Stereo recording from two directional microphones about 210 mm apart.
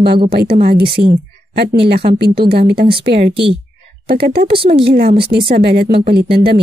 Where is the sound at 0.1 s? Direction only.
25° right (ahead or behind).